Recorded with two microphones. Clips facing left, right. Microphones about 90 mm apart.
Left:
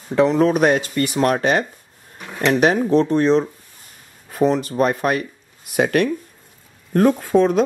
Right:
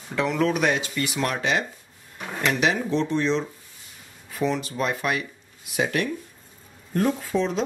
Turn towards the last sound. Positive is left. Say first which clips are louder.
# left 9 dB
turn(degrees=55)  # may be behind; listen again after turning